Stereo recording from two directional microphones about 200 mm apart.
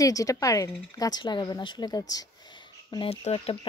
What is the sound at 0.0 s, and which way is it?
A woman's voice, 15° left (ahead or behind).